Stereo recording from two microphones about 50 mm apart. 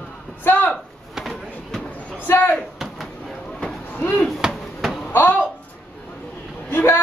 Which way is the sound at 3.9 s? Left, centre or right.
Left.